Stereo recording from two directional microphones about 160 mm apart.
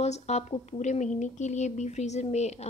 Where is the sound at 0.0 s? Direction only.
45° left (ahead or behind).